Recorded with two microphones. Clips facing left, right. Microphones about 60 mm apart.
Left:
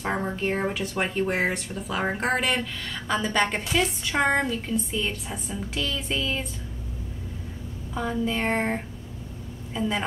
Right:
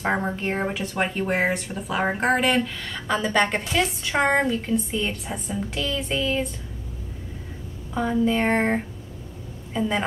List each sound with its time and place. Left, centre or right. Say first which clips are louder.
0.0 s a woman's voice: right 2 dB; centre
7.9 s a woman's voice: right 5 dB; centre